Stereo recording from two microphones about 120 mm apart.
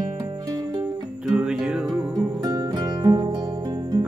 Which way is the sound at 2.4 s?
30° right (ahead or behind).